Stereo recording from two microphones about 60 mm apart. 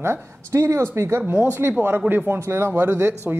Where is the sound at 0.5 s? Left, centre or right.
Right.